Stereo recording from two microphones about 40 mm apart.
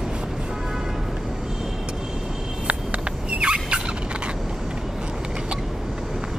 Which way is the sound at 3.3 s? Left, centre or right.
Right.